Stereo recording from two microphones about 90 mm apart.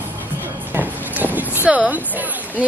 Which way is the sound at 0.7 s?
20° right (ahead or behind).